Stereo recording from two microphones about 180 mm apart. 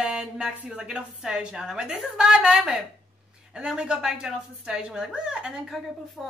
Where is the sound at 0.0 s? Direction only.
5° right (ahead or behind).